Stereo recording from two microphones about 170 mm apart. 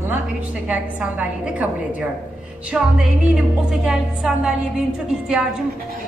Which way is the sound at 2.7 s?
5° right (ahead or behind).